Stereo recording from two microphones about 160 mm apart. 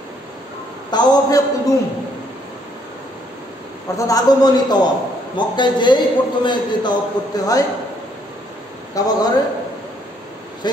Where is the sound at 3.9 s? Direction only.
25° left (ahead or behind).